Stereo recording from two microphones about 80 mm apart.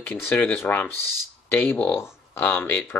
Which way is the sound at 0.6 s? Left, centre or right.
Left.